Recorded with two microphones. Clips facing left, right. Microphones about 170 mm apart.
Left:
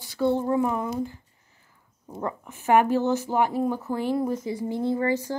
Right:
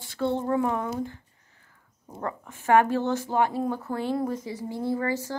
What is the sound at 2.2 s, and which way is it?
Speech, 10° left (ahead or behind).